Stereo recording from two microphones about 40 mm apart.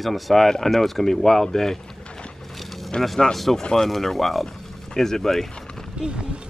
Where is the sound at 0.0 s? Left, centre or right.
Centre.